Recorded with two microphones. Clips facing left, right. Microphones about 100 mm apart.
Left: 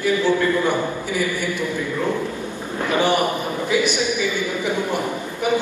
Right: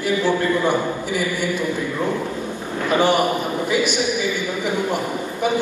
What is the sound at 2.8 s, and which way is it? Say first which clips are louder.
A man's voice: right 2 dB; 20° right (ahead or behind).